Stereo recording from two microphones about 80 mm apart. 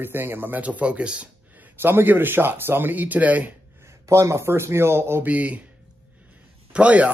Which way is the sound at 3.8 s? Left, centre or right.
Right.